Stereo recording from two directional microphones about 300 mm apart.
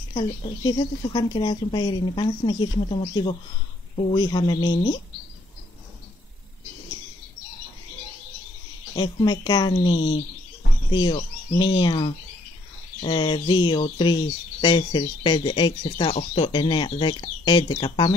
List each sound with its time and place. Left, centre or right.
0.1 s speech: centre
8.9 s speech: centre